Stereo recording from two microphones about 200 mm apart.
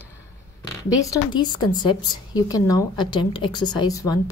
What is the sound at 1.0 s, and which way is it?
A woman's voice, 20° left (ahead or behind).